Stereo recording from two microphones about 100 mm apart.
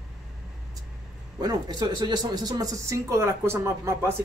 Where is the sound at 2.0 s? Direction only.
45° right (ahead or behind).